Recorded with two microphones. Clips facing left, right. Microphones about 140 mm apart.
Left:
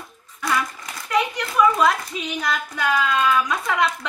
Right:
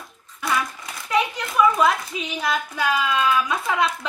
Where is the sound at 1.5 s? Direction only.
Centre (ahead or behind).